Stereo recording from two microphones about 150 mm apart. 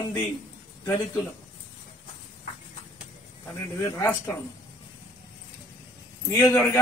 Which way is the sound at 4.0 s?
15° left (ahead or behind).